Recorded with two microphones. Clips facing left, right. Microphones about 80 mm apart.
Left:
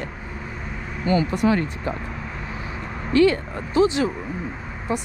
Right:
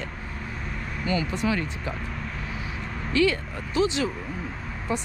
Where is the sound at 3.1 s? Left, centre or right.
Left.